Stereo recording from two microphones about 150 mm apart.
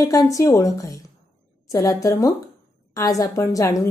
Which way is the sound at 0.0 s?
20° left (ahead or behind).